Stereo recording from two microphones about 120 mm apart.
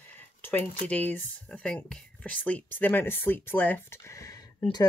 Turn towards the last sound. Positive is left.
turn(degrees=30)  # may be behind; listen again after turning